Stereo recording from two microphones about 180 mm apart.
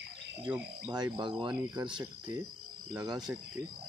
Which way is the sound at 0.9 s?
25° right (ahead or behind).